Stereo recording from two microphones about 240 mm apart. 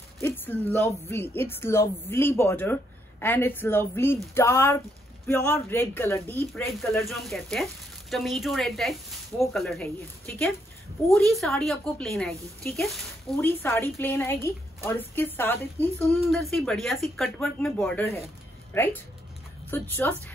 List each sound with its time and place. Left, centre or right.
0.2 s a woman's voice: centre